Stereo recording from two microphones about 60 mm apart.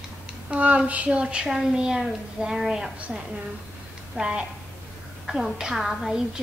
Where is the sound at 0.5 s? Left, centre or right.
Right; by 2.9 s centre.